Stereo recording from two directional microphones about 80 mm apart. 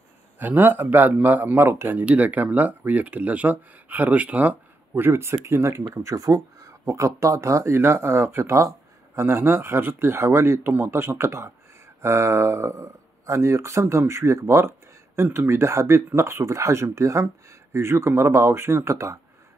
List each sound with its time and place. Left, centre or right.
0.4 s speech: right